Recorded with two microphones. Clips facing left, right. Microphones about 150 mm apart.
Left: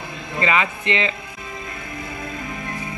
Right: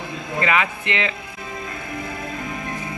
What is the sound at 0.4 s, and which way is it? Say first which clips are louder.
Speech: even; 5° right (ahead or behind).